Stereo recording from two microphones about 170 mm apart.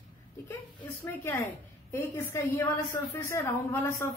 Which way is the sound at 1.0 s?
10° left (ahead or behind).